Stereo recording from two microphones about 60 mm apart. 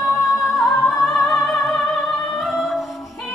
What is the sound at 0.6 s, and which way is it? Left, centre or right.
Opera, centre.